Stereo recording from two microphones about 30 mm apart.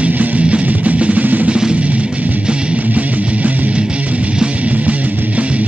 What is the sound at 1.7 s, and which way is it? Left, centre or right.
Music, right.